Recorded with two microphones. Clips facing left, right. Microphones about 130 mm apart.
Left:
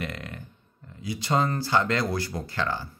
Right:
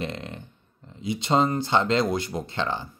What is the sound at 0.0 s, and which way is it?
A man's voice, 25° right (ahead or behind).